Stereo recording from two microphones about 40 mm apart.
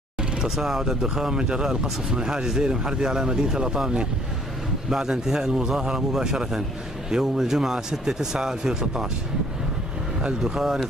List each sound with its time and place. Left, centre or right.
0.2 s speech: centre
10.4 s speech: centre